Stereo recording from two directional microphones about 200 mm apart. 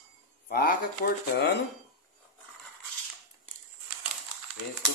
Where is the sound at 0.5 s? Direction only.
50° left (ahead or behind).